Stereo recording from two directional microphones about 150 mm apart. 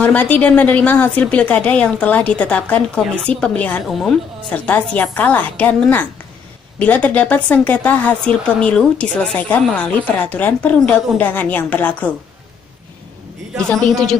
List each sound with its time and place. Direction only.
0.0 s a woman's voice: 10° left (ahead or behind)
13.7 s a woman's voice: 5° left (ahead or behind)